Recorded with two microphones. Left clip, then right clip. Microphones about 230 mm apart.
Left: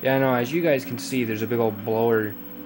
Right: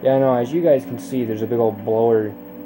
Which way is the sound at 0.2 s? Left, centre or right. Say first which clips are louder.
Right 5 dB; left.